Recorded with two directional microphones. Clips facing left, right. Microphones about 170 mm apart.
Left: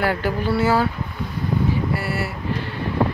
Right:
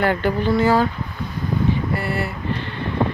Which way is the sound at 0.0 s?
5° left (ahead or behind).